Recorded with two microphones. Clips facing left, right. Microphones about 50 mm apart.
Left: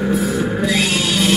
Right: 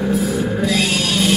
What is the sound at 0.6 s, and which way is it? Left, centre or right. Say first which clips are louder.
Music: even; centre.